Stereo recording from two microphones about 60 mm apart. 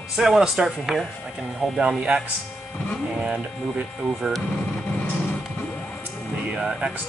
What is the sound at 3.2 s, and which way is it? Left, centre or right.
Speech, right.